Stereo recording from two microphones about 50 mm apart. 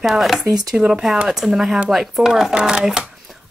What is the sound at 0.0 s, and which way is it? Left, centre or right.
Speech, centre.